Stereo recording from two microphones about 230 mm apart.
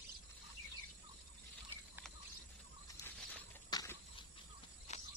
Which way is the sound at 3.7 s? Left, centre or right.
Centre.